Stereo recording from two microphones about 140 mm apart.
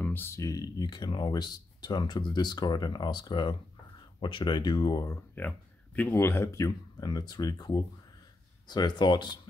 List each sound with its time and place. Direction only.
0.0 s speech: 15° left (ahead or behind); by 9.4 s 30° left (ahead or behind)